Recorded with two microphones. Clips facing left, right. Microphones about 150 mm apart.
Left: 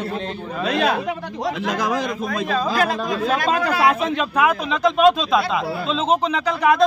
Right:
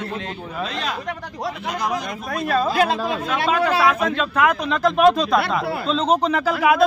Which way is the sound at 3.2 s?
35° left (ahead or behind).